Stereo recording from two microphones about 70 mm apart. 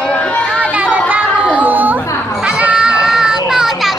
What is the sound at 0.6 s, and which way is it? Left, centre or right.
Children playing, centre.